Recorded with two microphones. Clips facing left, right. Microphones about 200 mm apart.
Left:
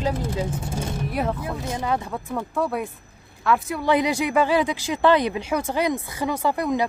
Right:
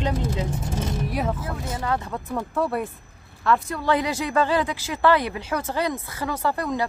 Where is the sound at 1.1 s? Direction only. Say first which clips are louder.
Left 3 dB; centre (ahead or behind).